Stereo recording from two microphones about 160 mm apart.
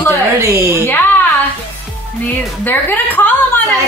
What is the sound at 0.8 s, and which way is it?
Speech, 10° left (ahead or behind).